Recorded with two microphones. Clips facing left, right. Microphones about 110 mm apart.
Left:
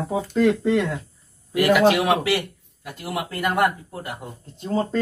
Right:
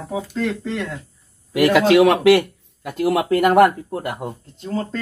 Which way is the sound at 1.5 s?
90° right.